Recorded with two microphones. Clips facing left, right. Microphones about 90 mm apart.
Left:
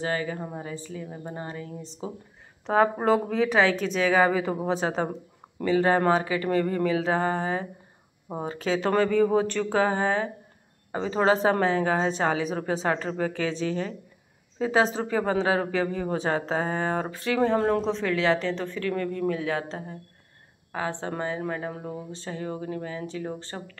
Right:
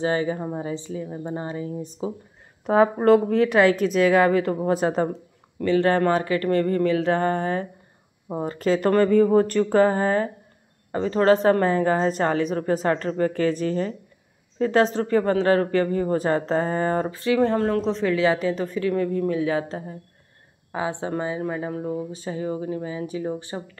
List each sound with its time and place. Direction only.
0.0 s speech: 20° right (ahead or behind)
2.6 s speech: 5° right (ahead or behind)
5.7 s speech: 10° left (ahead or behind); by 23.8 s 10° right (ahead or behind)